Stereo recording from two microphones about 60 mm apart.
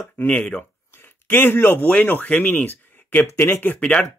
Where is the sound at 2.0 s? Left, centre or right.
Left.